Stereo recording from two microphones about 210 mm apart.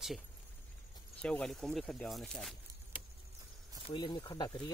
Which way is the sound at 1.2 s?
5° left (ahead or behind).